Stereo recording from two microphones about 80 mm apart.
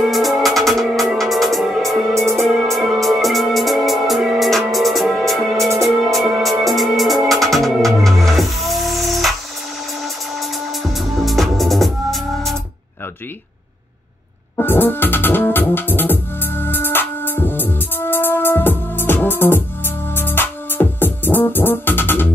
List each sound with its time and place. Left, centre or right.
0.0 s music: centre
2.1 s music: right
2.4 s music: centre
14.6 s music: left